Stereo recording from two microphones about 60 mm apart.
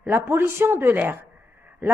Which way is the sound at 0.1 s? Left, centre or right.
Right.